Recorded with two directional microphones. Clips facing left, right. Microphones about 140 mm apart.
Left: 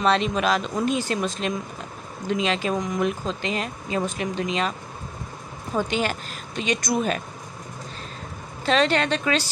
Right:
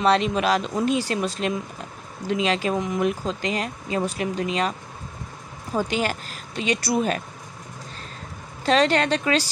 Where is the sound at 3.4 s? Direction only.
30° left (ahead or behind).